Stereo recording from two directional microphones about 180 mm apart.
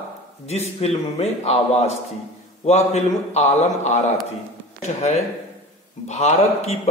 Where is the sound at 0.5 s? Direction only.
35° left (ahead or behind).